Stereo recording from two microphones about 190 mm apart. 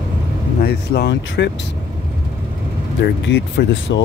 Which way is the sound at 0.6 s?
55° left (ahead or behind).